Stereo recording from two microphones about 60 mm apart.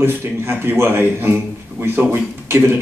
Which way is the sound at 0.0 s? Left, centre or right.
Right.